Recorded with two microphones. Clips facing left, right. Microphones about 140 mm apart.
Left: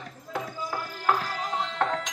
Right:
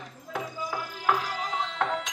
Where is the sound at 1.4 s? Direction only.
Centre (ahead or behind).